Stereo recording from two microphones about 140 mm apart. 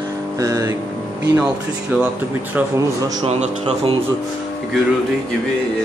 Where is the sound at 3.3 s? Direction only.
50° right (ahead or behind).